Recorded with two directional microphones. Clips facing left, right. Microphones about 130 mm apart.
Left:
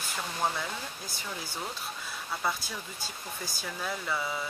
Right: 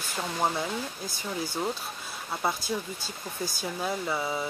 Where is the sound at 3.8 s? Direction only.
25° right (ahead or behind).